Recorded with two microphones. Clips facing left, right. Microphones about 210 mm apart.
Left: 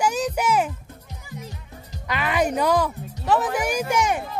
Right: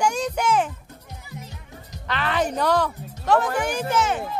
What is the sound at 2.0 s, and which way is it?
Speech, 10° left (ahead or behind).